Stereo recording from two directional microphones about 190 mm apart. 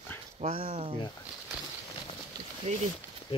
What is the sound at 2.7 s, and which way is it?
Speech, 35° right (ahead or behind).